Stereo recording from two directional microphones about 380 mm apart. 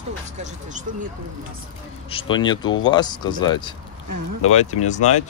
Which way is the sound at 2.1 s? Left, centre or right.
Centre.